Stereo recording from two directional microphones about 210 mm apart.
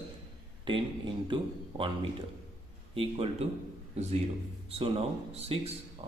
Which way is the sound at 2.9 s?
25° right (ahead or behind).